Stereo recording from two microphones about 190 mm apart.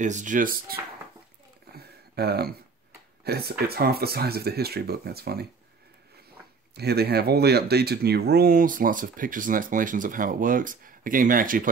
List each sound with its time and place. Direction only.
0.0 s speech: 40° right (ahead or behind)
1.7 s a sound: 55° right (ahead or behind)
3.3 s speech: 55° right (ahead or behind)
6.7 s speech: 60° right (ahead or behind)